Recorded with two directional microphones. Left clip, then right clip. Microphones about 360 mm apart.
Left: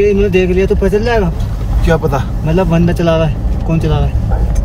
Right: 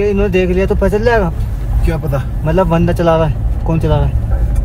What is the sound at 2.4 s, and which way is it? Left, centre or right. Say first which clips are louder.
Speech: right 2 dB; centre.